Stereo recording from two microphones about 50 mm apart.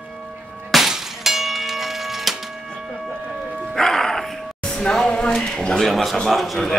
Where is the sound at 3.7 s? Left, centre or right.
Centre.